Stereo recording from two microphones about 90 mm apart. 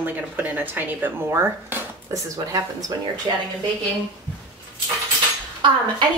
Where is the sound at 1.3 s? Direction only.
30° right (ahead or behind).